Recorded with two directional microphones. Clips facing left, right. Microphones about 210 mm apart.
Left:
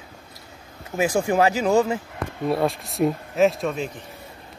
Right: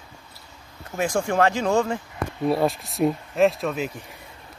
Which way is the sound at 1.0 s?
5° left (ahead or behind).